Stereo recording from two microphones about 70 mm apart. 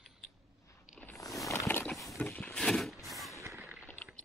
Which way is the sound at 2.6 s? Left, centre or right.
Centre.